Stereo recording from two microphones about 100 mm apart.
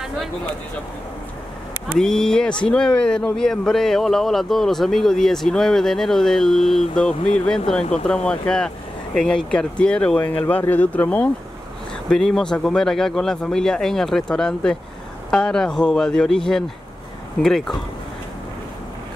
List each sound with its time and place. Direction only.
2.0 s speech: 5° left (ahead or behind)
12.1 s speech: 5° left (ahead or behind)